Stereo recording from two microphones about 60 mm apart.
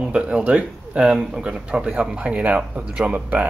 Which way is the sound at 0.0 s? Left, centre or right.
Centre.